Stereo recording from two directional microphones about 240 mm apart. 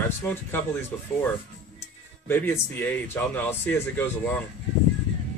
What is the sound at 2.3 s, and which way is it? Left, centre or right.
A man's voice, centre.